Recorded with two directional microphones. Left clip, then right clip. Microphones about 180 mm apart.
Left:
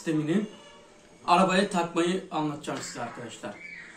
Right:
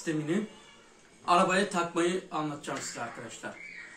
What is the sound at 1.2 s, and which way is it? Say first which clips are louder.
Speech: left 2 dB; centre (ahead or behind).